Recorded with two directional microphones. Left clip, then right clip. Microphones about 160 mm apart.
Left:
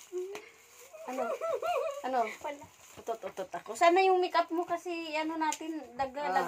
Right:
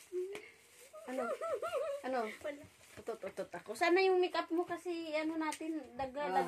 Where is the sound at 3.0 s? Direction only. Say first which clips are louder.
Left 5 dB; 20° right (ahead or behind).